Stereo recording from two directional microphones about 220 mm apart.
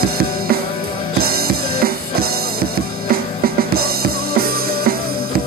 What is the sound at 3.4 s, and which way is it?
Drum kit, 45° right (ahead or behind).